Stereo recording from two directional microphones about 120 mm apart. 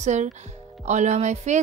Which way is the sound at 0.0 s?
75° right (ahead or behind).